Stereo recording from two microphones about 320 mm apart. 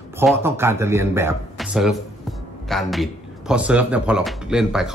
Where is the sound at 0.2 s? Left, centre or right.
Centre.